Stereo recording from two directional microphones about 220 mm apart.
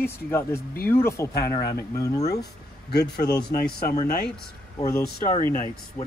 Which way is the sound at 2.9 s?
45° left (ahead or behind).